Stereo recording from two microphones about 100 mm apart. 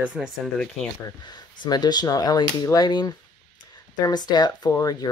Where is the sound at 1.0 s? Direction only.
45° left (ahead or behind).